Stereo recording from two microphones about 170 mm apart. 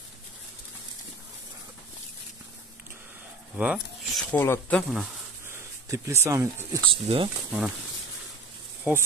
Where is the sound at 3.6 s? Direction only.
5° right (ahead or behind).